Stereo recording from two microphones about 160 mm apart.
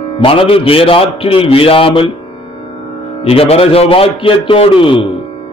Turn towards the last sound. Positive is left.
turn(degrees=35)  # may be behind; listen again after turning